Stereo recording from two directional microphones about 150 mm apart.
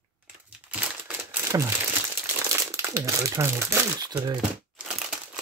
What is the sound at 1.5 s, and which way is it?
Speech, 25° right (ahead or behind).